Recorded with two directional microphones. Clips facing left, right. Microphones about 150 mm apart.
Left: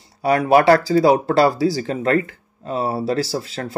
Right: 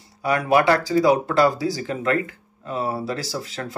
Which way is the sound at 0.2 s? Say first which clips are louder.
Left 4 dB; 30° left (ahead or behind).